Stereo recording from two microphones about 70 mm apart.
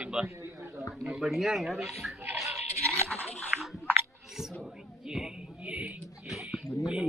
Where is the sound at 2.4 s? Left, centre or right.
Right.